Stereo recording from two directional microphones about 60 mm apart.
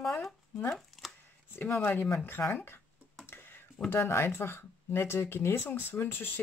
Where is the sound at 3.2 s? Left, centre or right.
Left.